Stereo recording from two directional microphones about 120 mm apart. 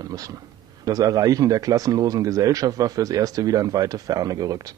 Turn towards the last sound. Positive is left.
turn(degrees=-30)  # may be behind; listen again after turning